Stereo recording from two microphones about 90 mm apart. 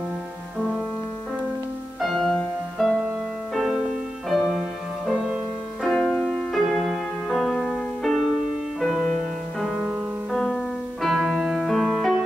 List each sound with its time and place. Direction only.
2.0 s music: centre (ahead or behind)